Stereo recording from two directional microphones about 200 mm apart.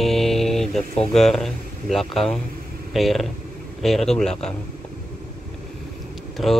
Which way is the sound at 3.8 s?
Centre (ahead or behind).